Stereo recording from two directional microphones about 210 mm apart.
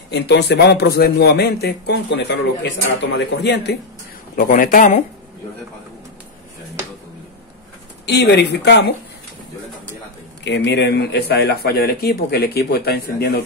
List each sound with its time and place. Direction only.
0.1 s a man's voice: 55° left (ahead or behind)
4.4 s speech: 40° left (ahead or behind)
8.1 s a man's voice: 50° left (ahead or behind)
10.4 s a man's voice: 55° left (ahead or behind)